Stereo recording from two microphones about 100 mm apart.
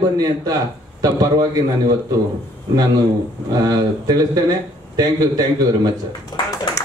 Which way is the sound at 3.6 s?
40° right (ahead or behind).